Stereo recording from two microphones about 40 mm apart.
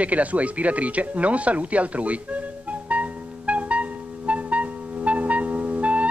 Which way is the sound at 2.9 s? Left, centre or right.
Right.